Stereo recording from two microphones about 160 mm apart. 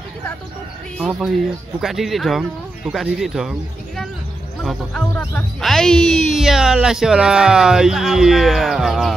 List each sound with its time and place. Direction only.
0.9 s speech: centre (ahead or behind)